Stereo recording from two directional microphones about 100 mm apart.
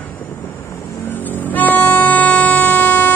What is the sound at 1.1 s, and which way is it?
Music, 20° left (ahead or behind).